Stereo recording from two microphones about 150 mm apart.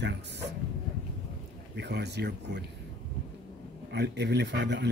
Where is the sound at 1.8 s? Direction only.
90° right.